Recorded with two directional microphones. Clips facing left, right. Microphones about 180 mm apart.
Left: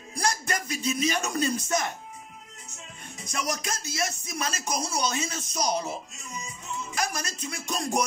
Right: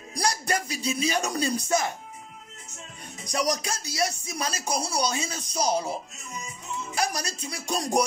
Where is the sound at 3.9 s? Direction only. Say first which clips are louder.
Right 5 dB; 35° right (ahead or behind).